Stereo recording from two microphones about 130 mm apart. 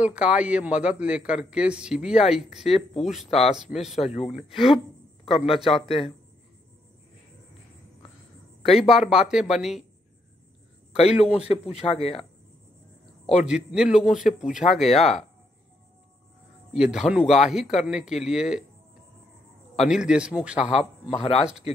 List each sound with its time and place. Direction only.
0.0 s a man's voice: 10° right (ahead or behind)
3.3 s speech: 50° left (ahead or behind)
4.5 s speech: 45° left (ahead or behind)
9.0 s a man's voice: 5° right (ahead or behind)
11.0 s speech: 50° left (ahead or behind)
13.4 s a man's voice: 10° right (ahead or behind)
14.9 s speech: 50° left (ahead or behind)
16.7 s a man's voice: 5° right (ahead or behind)
19.7 s a man's voice: 5° right (ahead or behind)
21.1 s speech: 50° left (ahead or behind)